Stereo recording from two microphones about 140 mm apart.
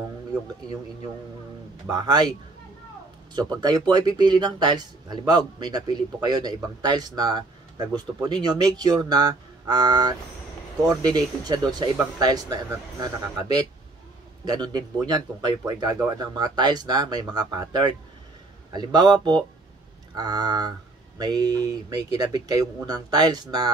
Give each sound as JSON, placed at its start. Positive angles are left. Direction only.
{"t": 1.9, "sound": "speech", "side_deg": -30}
{"t": 3.3, "sound": "a man's voice", "side_deg": -30}
{"t": 20.2, "sound": "a man's voice", "side_deg": -30}